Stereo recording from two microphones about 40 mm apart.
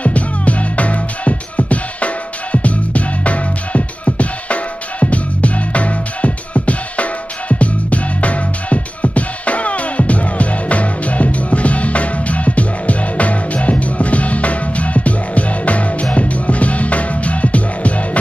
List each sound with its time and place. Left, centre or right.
0.0 s music: left